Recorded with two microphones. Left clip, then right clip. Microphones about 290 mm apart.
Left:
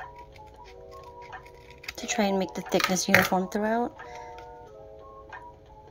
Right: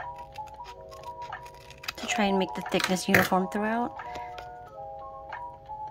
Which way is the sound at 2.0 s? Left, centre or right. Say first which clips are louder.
Even; right.